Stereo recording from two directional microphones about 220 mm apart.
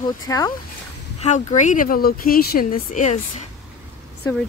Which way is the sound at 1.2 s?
30° left (ahead or behind).